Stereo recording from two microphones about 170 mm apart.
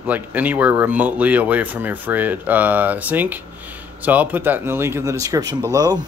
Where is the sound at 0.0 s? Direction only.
10° right (ahead or behind).